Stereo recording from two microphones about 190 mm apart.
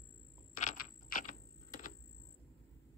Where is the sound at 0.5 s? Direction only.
45° left (ahead or behind).